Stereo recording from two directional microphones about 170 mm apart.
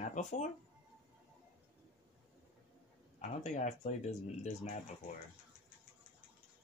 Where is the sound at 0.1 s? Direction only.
45° left (ahead or behind).